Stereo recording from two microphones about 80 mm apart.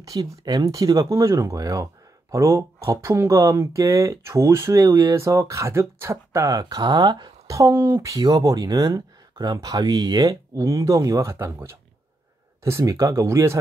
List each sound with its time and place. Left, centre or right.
0.0 s speech: right
6.6 s speech: right
7.4 s speech: right
8.0 s speech: right
10.5 s speech: right